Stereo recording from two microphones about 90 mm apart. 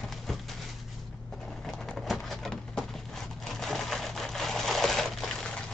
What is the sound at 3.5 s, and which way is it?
Sewing machine, 5° left (ahead or behind).